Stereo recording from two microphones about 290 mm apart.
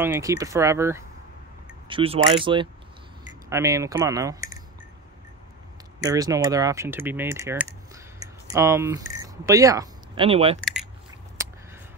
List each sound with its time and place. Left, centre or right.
0.0 s speech: centre
6.0 s speech: centre
10.6 s coin: centre